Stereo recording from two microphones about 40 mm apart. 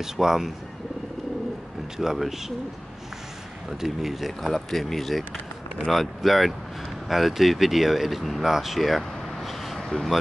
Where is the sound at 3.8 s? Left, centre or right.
Centre.